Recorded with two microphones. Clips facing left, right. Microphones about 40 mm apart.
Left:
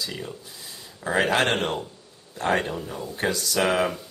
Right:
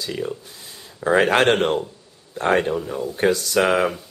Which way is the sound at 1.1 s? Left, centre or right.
Right.